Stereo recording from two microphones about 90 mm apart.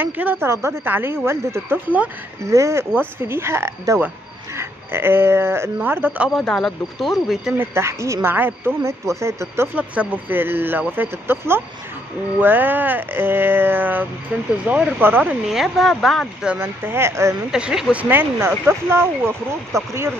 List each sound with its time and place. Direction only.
0.0 s speech: 20° right (ahead or behind)
6.3 s speech: 5° left (ahead or behind)
7.5 s speech: 30° right (ahead or behind)
9.8 s speech: 20° right (ahead or behind)
15.0 s speech: 20° right (ahead or behind)
15.4 s speech: centre (ahead or behind)
16.5 s speech: 25° right (ahead or behind)
17.5 s speech: 10° right (ahead or behind)
17.9 s speech: 20° right (ahead or behind)